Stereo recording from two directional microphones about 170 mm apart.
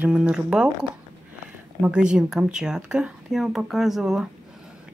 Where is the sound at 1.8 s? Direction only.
5° right (ahead or behind).